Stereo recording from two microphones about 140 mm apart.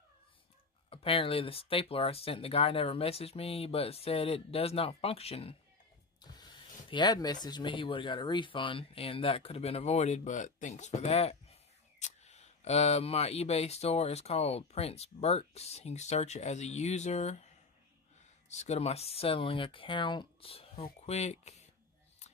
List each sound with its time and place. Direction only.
0.8 s speech: 40° left (ahead or behind)
6.3 s speech: 30° left (ahead or behind); by 17.5 s 50° left (ahead or behind)
18.5 s speech: 55° left (ahead or behind)